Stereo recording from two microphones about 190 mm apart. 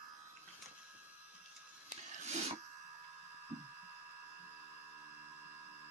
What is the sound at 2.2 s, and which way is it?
Printer, 35° right (ahead or behind).